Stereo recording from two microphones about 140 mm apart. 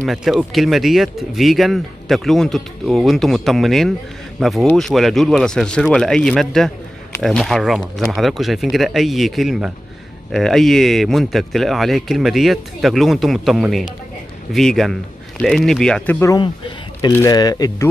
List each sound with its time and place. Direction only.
0.0 s speech: centre (ahead or behind)
17.1 s speech: 25° left (ahead or behind)